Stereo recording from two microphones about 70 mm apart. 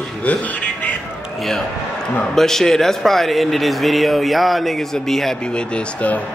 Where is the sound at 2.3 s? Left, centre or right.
Centre.